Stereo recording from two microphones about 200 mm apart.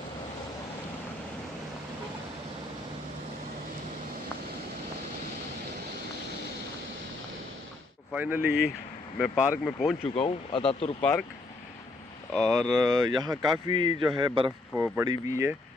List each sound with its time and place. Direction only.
8.1 s speech: 10° right (ahead or behind)
10.0 s speech: 30° left (ahead or behind)
11.0 s speech: 5° left (ahead or behind)
12.3 s speech: 5° left (ahead or behind)
13.2 s a man's voice: 20° right (ahead or behind)